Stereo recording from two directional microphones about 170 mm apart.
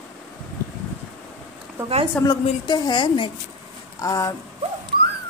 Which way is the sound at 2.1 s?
25° left (ahead or behind).